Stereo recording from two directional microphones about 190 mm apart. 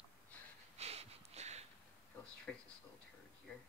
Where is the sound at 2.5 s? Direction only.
5° left (ahead or behind).